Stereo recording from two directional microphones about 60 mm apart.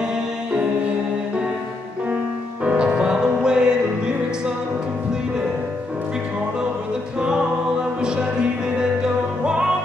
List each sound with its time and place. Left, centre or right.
2.6 s music: centre
8.0 s music: centre